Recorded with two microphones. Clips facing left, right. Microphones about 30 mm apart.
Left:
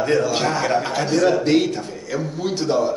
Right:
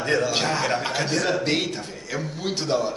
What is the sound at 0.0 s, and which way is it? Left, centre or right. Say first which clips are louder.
A man's voice: left 4 dB; right.